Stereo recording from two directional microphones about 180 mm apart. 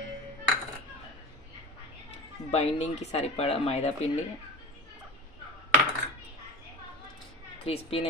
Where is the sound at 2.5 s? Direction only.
35° left (ahead or behind).